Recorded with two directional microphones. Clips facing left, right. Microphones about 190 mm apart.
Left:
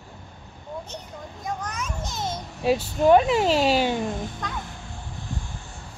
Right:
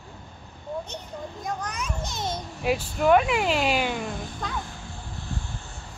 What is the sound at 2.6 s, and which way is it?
Speech, 25° left (ahead or behind).